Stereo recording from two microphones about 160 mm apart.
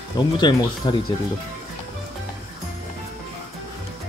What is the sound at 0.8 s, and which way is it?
Speech, 25° left (ahead or behind).